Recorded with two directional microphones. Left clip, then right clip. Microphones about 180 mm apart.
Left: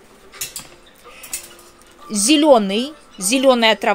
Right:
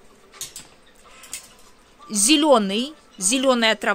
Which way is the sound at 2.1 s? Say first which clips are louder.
Left 4 dB; 25° right (ahead or behind).